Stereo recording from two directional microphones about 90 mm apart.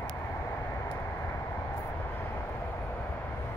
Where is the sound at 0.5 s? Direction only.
25° left (ahead or behind).